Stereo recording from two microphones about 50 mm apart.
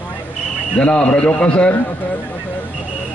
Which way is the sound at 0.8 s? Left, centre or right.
Centre.